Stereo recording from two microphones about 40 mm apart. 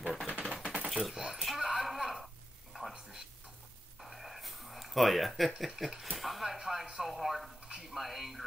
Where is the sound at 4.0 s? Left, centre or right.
Centre.